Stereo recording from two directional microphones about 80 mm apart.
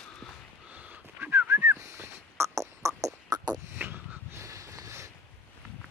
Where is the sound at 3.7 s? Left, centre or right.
Right.